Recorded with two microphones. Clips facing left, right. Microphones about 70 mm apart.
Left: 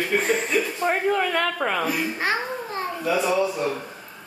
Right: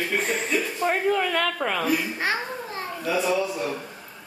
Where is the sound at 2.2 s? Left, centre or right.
Centre.